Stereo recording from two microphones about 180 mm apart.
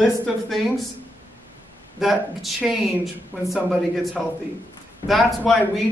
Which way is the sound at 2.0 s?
Centre (ahead or behind).